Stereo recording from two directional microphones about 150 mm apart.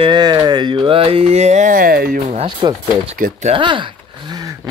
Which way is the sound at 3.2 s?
65° right (ahead or behind).